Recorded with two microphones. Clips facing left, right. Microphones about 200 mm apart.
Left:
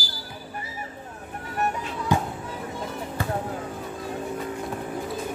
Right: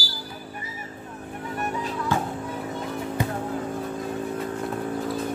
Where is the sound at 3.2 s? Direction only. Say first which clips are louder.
Right 1 dB; 15° right (ahead or behind).